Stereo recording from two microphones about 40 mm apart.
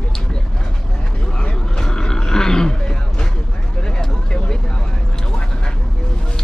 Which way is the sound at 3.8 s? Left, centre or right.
Centre.